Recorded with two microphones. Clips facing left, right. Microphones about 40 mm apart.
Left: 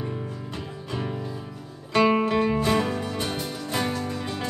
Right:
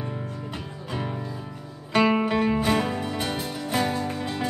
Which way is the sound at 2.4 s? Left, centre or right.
Centre.